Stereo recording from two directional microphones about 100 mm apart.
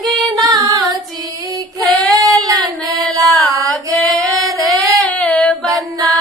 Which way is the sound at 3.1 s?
35° right (ahead or behind).